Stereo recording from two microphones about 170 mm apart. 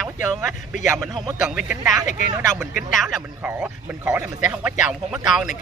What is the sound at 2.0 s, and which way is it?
Speech, 50° left (ahead or behind).